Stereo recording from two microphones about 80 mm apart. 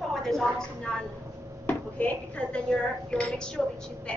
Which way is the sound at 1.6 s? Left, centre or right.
Centre.